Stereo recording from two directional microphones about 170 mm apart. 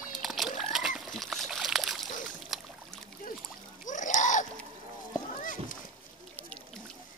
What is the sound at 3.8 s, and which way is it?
Splash, 50° left (ahead or behind).